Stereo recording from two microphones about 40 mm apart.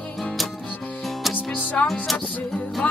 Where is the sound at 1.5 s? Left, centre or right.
Left.